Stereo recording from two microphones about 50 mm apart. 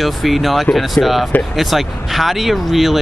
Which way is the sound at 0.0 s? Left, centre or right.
Centre.